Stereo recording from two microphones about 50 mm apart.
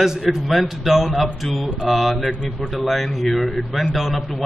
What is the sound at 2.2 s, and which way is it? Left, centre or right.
Speech, left.